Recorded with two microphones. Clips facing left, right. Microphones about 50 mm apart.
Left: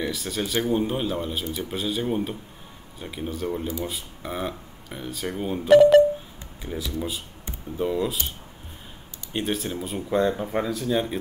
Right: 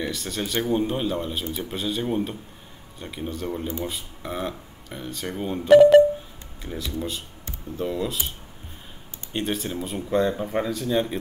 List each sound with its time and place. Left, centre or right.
0.0 s speech: centre
9.3 s speech: centre